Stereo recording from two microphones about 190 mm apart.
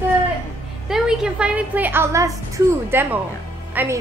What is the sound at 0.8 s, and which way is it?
A woman's voice, 5° right (ahead or behind).